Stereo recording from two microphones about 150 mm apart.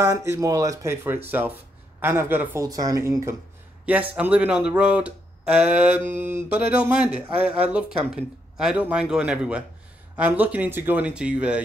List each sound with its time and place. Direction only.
0.0 s speech: 20° right (ahead or behind)